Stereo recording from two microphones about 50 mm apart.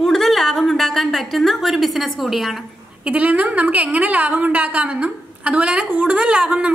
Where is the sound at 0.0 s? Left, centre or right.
Centre.